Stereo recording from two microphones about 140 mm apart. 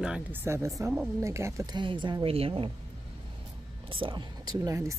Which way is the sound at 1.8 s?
35° right (ahead or behind).